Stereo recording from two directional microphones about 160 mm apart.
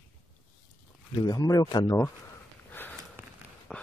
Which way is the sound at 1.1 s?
25° left (ahead or behind).